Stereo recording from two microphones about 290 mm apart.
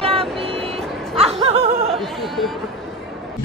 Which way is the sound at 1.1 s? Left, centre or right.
Centre.